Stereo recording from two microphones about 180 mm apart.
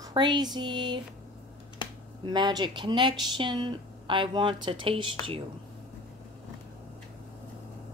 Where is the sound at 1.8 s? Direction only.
25° left (ahead or behind).